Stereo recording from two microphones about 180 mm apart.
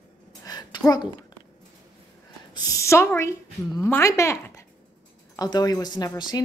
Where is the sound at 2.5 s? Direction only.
15° left (ahead or behind).